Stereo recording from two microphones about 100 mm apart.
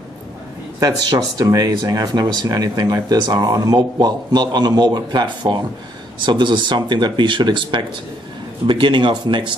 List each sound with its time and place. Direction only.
0.7 s speech: 35° right (ahead or behind); by 9.6 s 55° right (ahead or behind)